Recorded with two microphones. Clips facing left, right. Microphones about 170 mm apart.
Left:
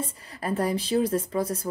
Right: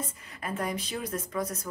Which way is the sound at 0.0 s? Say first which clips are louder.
Left 5 dB; 35° left (ahead or behind).